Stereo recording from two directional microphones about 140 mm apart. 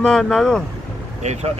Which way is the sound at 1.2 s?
55° right (ahead or behind).